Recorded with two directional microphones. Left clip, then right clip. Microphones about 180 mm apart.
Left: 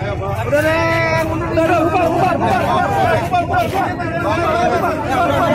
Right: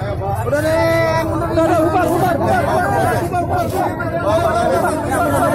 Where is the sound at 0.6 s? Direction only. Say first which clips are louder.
Right 1 dB; 50° right (ahead or behind).